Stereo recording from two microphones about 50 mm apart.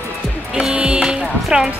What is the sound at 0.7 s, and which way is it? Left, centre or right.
Speech, centre.